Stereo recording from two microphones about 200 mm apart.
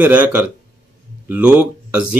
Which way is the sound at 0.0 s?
10° right (ahead or behind).